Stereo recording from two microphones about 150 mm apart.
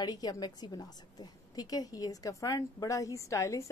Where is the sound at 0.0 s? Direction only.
25° left (ahead or behind).